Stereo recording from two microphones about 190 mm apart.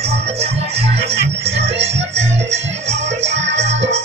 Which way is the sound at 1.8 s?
35° right (ahead or behind).